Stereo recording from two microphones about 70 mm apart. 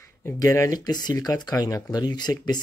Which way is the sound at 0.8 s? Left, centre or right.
Left.